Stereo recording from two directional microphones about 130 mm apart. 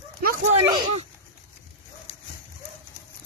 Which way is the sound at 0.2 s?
90° right.